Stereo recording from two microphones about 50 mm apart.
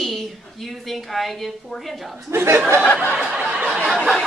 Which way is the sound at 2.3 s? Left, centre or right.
Right.